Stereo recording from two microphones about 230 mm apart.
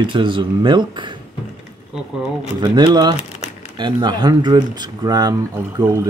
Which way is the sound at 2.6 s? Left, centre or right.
Centre.